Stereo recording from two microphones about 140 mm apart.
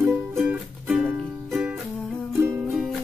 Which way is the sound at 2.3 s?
20° right (ahead or behind).